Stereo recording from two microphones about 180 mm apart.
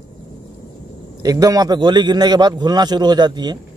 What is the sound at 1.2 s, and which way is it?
A man's voice, 20° right (ahead or behind).